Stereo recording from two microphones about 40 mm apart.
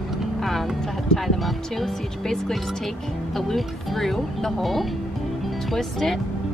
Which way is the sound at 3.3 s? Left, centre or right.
Centre.